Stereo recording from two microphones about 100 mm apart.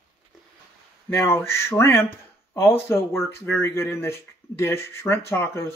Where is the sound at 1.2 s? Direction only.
25° left (ahead or behind).